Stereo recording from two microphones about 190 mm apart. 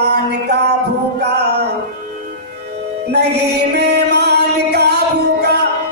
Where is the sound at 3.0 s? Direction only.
60° right (ahead or behind).